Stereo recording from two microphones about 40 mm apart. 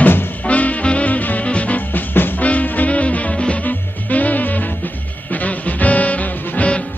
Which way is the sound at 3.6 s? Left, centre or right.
Left.